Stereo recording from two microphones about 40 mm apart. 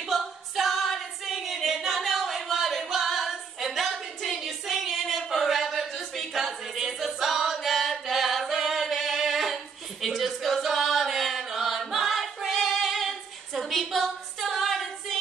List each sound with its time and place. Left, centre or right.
0.1 s a capella: centre
5.7 s music: centre
8.8 s singing: centre
10.0 s choir: centre